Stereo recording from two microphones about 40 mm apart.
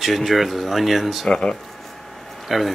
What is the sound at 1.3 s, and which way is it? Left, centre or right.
Speech, left.